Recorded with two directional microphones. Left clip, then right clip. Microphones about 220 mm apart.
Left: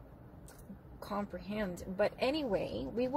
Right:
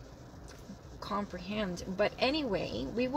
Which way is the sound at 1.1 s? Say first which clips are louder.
Right 3 dB; 10° right (ahead or behind).